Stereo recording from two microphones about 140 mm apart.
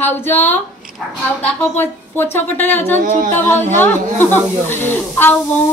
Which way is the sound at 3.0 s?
65° right (ahead or behind).